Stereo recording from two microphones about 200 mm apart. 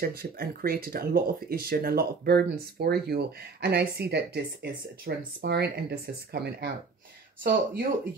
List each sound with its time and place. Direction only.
0.0 s speech: 50° right (ahead or behind)